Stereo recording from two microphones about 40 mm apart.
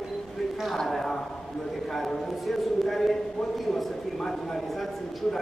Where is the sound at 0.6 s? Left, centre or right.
Centre.